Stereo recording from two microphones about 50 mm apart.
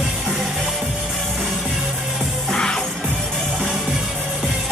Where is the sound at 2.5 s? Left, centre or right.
Centre.